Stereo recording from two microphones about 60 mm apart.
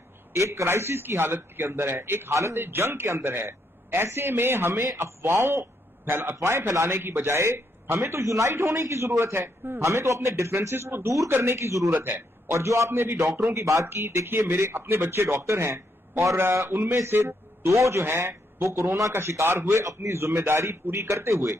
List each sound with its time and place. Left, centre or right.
0.3 s a man's voice: right
0.7 s a man's voice: right
9.8 s a man's voice: right
12.9 s a man's voice: right
16.3 s a man's voice: right
18.0 s a man's voice: right
19.7 s a man's voice: right
20.2 s a man's voice: right